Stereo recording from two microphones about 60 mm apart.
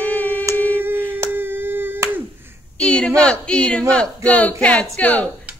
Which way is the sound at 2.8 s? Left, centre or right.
Centre.